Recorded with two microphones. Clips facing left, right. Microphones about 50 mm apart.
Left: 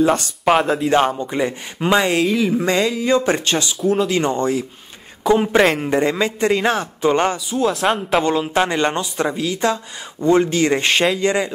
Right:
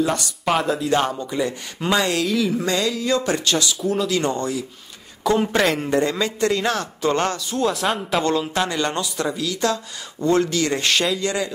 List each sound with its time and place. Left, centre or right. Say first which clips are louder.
0.0 s a man's voice: left 6 dB; left
3.8 s speech: left 8 dB; centre
4.1 s a man's voice: left 4 dB; left
5.2 s a man's voice: left 4 dB; centre
7.5 s speech: left 3 dB; centre
8.2 s speech: left 2 dB; centre
8.5 s a man's voice: left 4 dB; left